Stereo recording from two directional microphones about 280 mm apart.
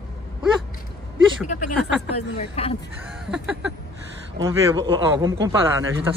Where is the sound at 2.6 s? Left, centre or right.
Left.